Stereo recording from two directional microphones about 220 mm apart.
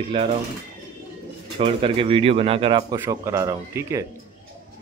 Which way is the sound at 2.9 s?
10° right (ahead or behind).